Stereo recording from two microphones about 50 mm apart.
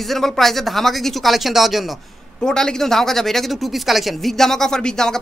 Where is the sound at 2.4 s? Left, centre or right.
Centre.